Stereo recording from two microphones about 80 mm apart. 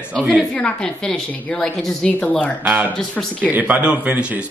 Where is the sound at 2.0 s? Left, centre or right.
Centre.